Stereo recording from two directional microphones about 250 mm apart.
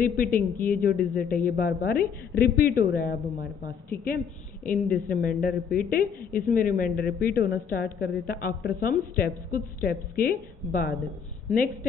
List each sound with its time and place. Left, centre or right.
0.0 s a woman's voice: left
3.9 s a woman's voice: centre
4.6 s a woman's voice: left